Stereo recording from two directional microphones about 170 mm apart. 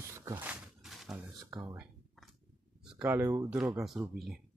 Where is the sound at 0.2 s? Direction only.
10° right (ahead or behind).